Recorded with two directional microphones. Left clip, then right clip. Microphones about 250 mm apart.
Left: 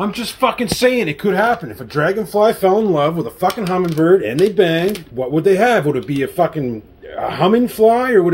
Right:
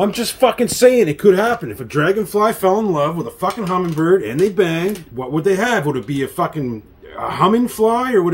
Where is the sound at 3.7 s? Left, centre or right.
Right.